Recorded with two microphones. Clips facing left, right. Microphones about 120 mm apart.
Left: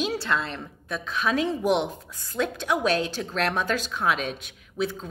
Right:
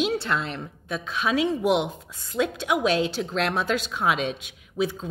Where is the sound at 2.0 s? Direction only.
20° right (ahead or behind).